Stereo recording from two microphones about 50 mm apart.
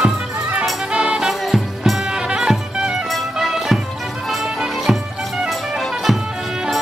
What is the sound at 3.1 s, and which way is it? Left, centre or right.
Music, centre.